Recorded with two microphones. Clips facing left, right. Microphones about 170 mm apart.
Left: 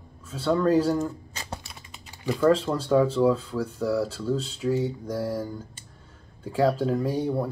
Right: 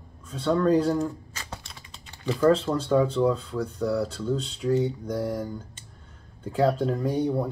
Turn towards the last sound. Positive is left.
turn(degrees=0)  # may be behind; listen again after turning